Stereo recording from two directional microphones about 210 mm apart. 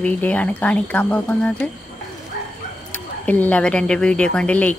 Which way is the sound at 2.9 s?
5° left (ahead or behind).